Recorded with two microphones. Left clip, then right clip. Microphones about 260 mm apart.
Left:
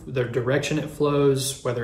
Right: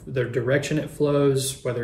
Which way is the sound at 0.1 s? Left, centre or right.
Centre.